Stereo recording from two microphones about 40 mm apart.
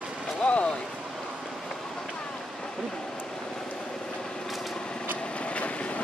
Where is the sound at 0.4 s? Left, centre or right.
Left.